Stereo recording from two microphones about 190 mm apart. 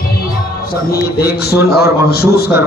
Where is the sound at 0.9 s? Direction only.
55° left (ahead or behind).